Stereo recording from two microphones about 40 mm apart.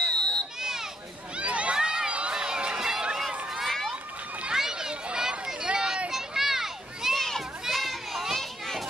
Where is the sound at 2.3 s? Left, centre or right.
Right.